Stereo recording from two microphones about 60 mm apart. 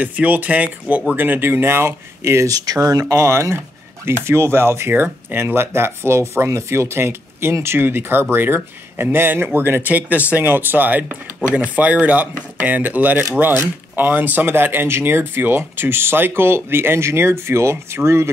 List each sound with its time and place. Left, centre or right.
0.0 s speech: right
2.4 s speech: right
3.2 s speech: right